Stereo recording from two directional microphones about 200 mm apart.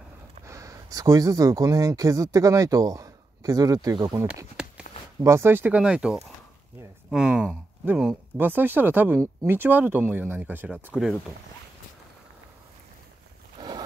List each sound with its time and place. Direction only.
0.5 s speech: 15° right (ahead or behind)
4.3 s speech: 5° right (ahead or behind)
13.6 s zipper: 20° right (ahead or behind)